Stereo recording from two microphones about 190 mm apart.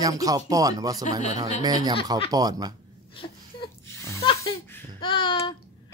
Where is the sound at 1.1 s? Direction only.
35° left (ahead or behind).